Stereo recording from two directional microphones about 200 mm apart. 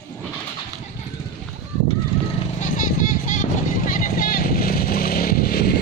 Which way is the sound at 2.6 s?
40° left (ahead or behind).